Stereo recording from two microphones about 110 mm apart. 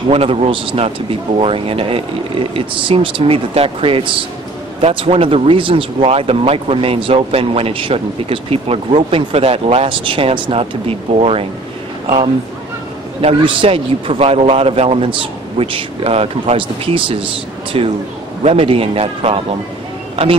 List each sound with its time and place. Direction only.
0.1 s speech: 65° right (ahead or behind)
13.2 s speech: 60° right (ahead or behind)